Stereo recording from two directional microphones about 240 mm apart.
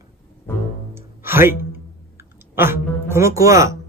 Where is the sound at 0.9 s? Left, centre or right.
Centre.